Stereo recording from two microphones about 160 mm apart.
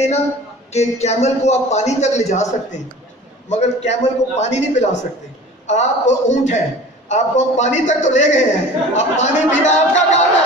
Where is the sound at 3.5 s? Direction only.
45° left (ahead or behind).